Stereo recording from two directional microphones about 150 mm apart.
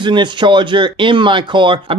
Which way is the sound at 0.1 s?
30° right (ahead or behind).